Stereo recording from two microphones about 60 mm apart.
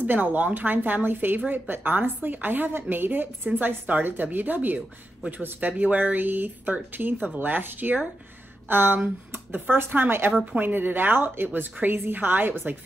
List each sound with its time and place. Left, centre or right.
0.0 s speech: right